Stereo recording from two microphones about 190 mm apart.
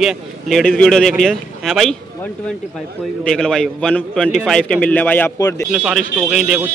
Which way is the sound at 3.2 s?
5° left (ahead or behind).